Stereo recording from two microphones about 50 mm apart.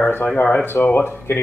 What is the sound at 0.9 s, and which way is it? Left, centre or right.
Speech, left.